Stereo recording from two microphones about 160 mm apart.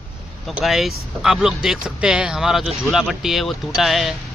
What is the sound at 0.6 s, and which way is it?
Speech, centre (ahead or behind).